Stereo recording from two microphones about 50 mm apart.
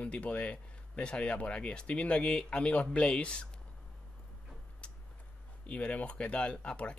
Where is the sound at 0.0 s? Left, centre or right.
Left.